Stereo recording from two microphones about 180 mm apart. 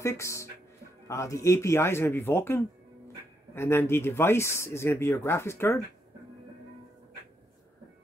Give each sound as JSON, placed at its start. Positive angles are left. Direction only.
{"t": 0.0, "sound": "speech", "side_deg": 15}